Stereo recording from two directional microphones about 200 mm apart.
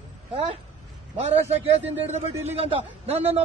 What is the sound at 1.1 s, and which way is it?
A man's voice, 30° right (ahead or behind).